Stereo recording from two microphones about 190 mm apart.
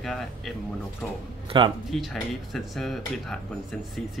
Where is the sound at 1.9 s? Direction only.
Centre (ahead or behind).